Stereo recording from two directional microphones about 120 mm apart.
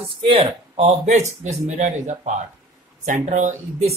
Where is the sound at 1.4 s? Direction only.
80° right.